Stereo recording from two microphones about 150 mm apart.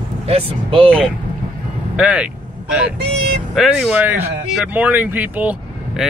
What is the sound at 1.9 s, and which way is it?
Vehicle, 5° right (ahead or behind).